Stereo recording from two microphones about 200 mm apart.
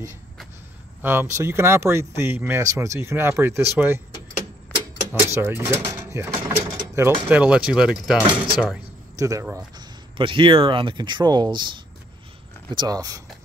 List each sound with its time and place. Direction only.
1.0 s speech: 10° right (ahead or behind)
3.8 s door: 10° right (ahead or behind)
5.2 s speech: 15° right (ahead or behind)
9.2 s speech: 15° right (ahead or behind)
10.1 s speech: 25° right (ahead or behind)